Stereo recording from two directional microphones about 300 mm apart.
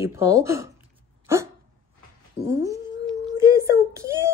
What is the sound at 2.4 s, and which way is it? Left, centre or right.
A child's voice, centre.